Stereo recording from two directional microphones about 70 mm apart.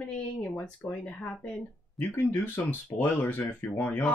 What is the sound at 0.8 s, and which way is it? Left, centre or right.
Speech, centre.